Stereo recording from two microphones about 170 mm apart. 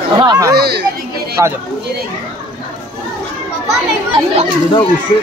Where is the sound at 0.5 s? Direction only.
75° right (ahead or behind).